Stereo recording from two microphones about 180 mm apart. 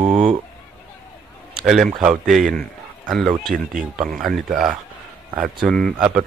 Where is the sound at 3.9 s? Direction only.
Centre (ahead or behind).